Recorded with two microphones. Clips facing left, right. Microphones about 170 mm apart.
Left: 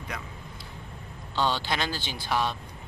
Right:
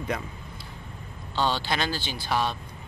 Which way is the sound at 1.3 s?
15° right (ahead or behind).